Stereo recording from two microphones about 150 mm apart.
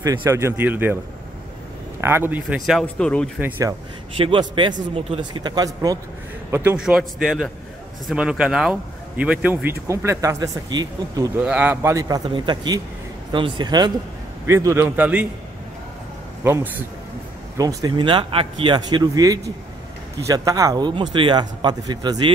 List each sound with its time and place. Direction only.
0.0 s a man's voice: 20° right (ahead or behind)
2.0 s a man's voice: 15° right (ahead or behind); by 3.3 s 5° left (ahead or behind)
3.3 s a man's voice: 10° right (ahead or behind)
4.2 s a man's voice: 35° right (ahead or behind); by 6.8 s 15° right (ahead or behind)
6.8 s a man's voice: 5° right (ahead or behind); by 11.3 s 25° right (ahead or behind)
11.3 s a man's voice: 10° right (ahead or behind)
12.3 s a man's voice: 30° right (ahead or behind)
14.4 s a man's voice: 20° right (ahead or behind)
16.4 s a man's voice: 15° right (ahead or behind)